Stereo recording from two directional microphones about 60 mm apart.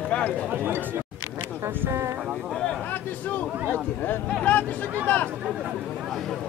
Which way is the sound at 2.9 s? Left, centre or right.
Left.